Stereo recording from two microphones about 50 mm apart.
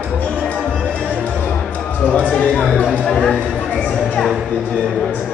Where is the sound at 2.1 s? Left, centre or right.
Left.